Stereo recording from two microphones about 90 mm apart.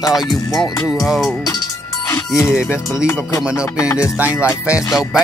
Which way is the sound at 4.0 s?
15° right (ahead or behind).